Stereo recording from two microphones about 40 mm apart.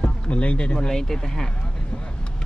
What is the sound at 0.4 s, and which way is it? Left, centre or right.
Speech, left.